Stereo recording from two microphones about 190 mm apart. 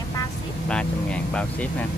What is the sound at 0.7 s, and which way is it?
Speech, 5° left (ahead or behind).